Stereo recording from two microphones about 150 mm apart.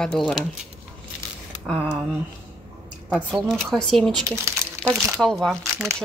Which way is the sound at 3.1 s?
Centre (ahead or behind).